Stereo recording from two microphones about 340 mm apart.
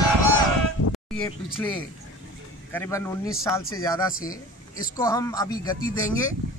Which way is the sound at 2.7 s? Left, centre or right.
Centre.